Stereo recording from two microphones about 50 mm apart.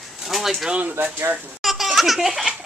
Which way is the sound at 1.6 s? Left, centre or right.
Centre.